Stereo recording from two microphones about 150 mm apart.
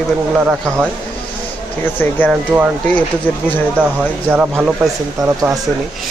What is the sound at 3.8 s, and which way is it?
Speech, 5° right (ahead or behind).